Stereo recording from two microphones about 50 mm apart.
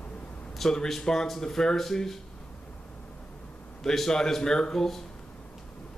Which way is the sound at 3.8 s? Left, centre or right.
Centre.